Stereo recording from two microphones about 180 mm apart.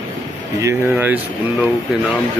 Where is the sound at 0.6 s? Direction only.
15° right (ahead or behind).